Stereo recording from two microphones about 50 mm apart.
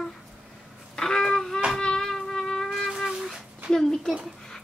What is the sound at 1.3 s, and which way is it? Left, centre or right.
Music, centre.